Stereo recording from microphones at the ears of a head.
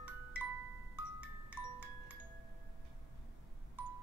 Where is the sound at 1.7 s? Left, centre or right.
Right.